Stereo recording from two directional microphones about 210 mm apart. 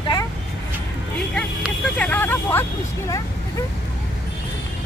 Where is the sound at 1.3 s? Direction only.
5° left (ahead or behind).